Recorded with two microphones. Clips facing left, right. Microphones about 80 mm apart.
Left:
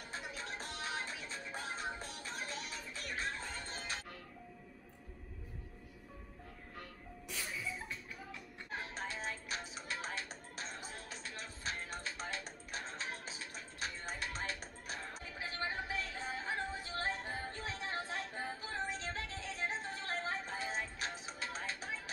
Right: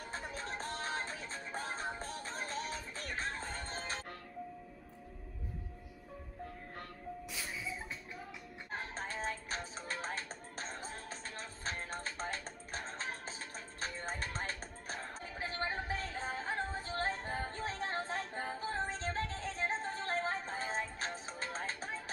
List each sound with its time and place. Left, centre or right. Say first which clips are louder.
0.1 s music: right 2 dB; right
7.2 s music: left 3 dB; centre
8.7 s music: right 1 dB; right